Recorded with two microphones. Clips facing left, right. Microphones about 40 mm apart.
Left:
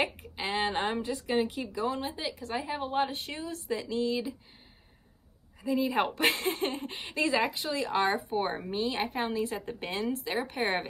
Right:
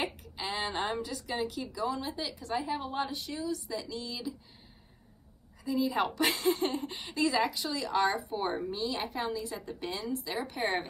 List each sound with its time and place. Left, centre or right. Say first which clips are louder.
0.4 s speech: left 4 dB; left
2.6 s a woman's voice: even; centre
2.9 s speech: left 4 dB; left
5.6 s speech: left 2 dB; left